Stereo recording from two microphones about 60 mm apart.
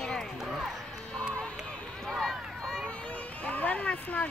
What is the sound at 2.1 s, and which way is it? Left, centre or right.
Run, centre.